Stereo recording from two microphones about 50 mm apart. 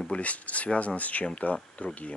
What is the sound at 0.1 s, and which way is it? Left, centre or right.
Speech, left.